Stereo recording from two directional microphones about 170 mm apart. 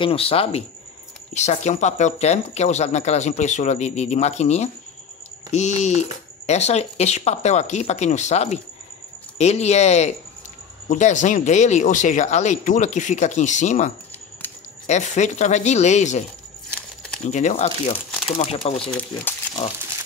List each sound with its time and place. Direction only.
0.0 s speech: 35° left (ahead or behind)
17.3 s speech: 45° left (ahead or behind)
18.8 s speech: 5° left (ahead or behind)